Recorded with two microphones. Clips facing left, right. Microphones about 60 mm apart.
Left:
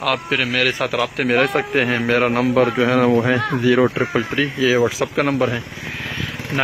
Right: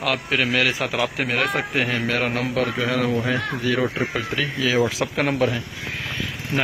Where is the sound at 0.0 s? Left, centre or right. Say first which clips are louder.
Left 2 dB; centre.